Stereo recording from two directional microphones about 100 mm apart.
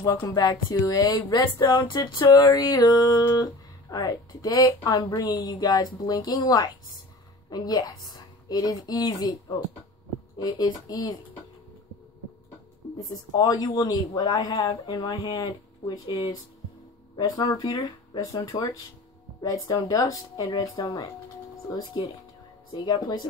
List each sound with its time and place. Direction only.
0.0 s a woman's voice: 35° left (ahead or behind)
13.1 s speech: 40° left (ahead or behind)
18.2 s speech: 35° left (ahead or behind)